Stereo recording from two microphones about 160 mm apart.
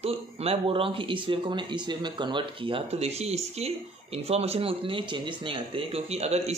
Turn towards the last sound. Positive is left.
turn(degrees=-40)  # may be behind; listen again after turning